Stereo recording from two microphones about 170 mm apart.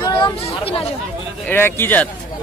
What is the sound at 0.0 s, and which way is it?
Chatter, 30° left (ahead or behind).